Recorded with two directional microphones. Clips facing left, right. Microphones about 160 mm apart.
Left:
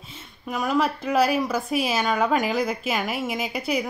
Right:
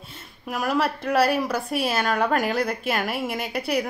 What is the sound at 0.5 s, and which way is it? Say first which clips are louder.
A woman's voice: left 1 dB; 5° right (ahead or behind).